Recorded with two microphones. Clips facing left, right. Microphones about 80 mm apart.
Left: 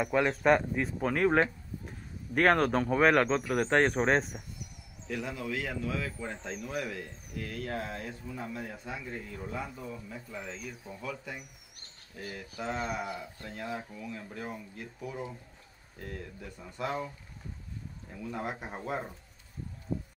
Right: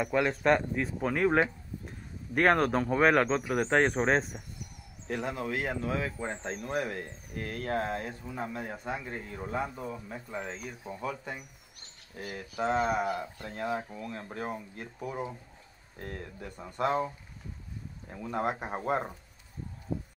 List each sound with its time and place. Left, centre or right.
0.0 s speech: centre
5.0 s speech: right
10.0 s speech: right
13.4 s speech: right
14.0 s speech: right
18.1 s speech: right
19.9 s a sound: centre